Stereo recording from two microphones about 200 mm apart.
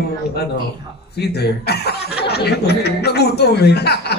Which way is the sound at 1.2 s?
55° left (ahead or behind).